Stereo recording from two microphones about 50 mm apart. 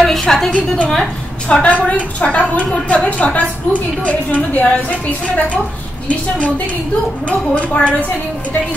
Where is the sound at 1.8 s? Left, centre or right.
Left.